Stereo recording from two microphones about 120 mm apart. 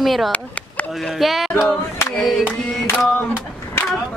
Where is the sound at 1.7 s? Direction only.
20° left (ahead or behind).